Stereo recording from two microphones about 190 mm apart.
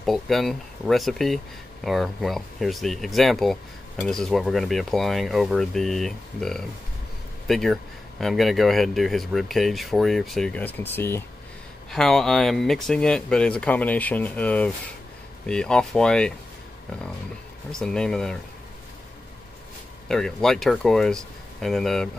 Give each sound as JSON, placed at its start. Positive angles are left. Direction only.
{"t": 0.0, "sound": "speech", "side_deg": 0}
{"t": 17.6, "sound": "speech", "side_deg": 5}
{"t": 20.1, "sound": "speech", "side_deg": 5}